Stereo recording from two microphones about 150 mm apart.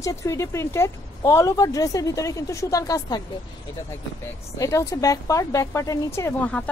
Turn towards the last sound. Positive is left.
turn(degrees=15)  # may be behind; listen again after turning